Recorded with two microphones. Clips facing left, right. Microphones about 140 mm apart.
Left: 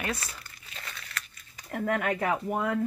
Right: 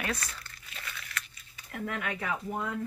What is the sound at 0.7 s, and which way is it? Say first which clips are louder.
Crumpling: even; 35° left (ahead or behind).